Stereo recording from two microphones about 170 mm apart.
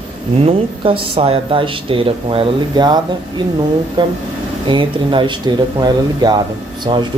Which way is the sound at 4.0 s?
25° right (ahead or behind).